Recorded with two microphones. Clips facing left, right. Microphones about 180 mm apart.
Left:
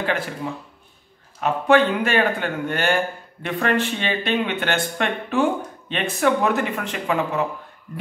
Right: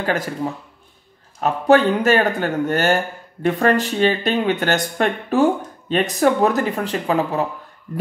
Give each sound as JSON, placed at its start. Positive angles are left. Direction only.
{"t": 0.0, "sound": "speech", "side_deg": -40}
{"t": 1.4, "sound": "speech", "side_deg": -40}